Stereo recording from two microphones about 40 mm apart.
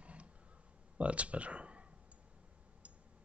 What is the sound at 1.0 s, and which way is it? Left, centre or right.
Speech, right.